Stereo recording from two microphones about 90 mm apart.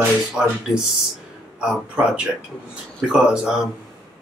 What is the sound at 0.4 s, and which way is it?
Speech, 10° right (ahead or behind).